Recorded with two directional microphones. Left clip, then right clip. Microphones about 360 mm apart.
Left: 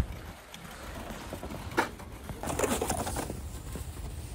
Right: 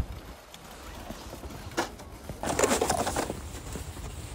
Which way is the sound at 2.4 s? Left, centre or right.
Right.